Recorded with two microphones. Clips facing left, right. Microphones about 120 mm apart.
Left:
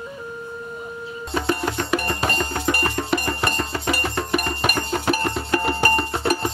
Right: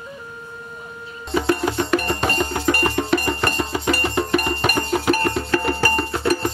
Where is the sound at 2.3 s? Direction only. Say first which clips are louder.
Right 3 dB; 10° right (ahead or behind).